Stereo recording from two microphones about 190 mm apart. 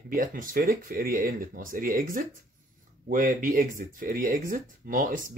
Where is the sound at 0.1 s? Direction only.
45° right (ahead or behind).